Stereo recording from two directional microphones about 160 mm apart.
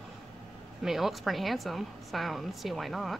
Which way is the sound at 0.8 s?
Centre (ahead or behind).